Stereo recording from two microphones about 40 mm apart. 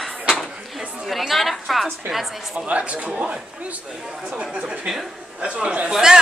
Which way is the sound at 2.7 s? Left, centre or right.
Right.